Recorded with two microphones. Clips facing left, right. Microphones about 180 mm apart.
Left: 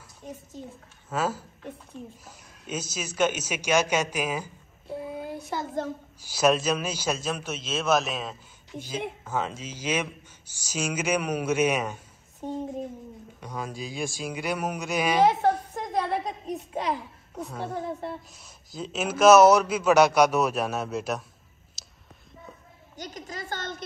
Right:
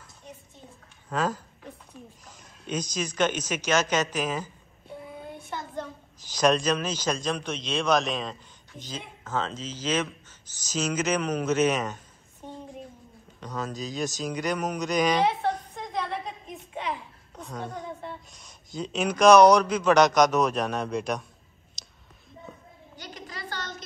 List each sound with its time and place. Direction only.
1.1 s a man's voice: 5° left (ahead or behind)
5.5 s a woman's voice: 35° left (ahead or behind)
6.2 s a man's voice: 5° left (ahead or behind)
13.4 s a man's voice: 10° left (ahead or behind)
15.2 s a sound: 45° left (ahead or behind)
17.4 s a man's voice: 5° left (ahead or behind)
17.6 s a woman's voice: 30° left (ahead or behind)
18.3 s a man's voice: centre (ahead or behind)
21.8 s a sound: 5° left (ahead or behind)
22.9 s a sound: 45° left (ahead or behind)